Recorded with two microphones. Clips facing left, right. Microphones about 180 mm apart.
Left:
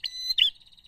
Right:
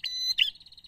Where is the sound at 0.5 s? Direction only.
55° left (ahead or behind).